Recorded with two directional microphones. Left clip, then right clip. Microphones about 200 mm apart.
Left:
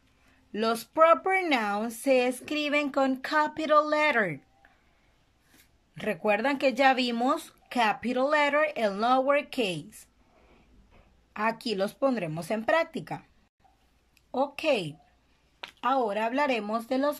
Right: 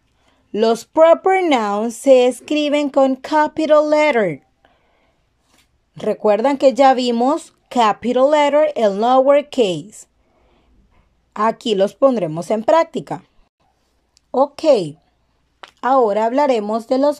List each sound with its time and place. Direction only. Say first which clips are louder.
0.5 s speech: right 12 dB; 35° right (ahead or behind)
5.9 s speech: right 11 dB; 30° right (ahead or behind)
11.3 s a woman's voice: right 12 dB; 35° right (ahead or behind)